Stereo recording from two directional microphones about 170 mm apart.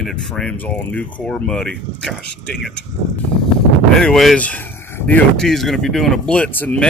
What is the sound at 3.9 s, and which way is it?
Speech, centre (ahead or behind).